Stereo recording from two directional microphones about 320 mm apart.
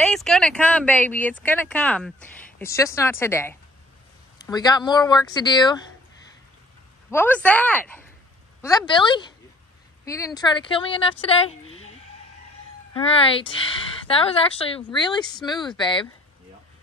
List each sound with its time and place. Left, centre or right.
0.0 s speech: centre
7.1 s speech: centre
12.9 s speech: centre